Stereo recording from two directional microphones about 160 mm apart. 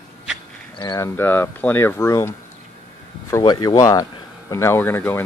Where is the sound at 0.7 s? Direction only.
25° left (ahead or behind).